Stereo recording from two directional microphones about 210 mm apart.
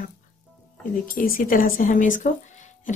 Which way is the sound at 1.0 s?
40° left (ahead or behind).